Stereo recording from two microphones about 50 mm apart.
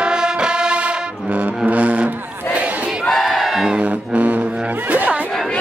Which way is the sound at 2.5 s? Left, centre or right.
Right.